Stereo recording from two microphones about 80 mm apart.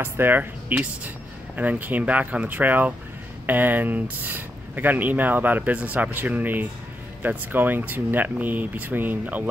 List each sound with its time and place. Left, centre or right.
0.0 s speech: right